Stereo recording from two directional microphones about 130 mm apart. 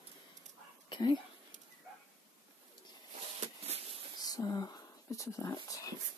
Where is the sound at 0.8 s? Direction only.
35° left (ahead or behind).